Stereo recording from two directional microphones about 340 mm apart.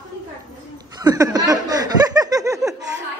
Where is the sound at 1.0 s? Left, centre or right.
Centre.